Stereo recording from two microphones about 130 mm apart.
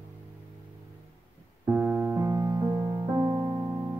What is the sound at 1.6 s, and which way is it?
Music, 15° right (ahead or behind).